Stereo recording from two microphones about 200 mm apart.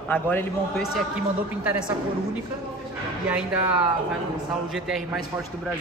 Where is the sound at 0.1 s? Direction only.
10° left (ahead or behind).